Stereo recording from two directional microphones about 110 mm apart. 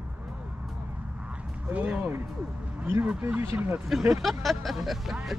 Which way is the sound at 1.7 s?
15° right (ahead or behind).